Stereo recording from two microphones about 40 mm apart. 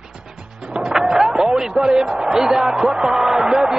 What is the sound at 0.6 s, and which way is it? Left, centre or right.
Music, right.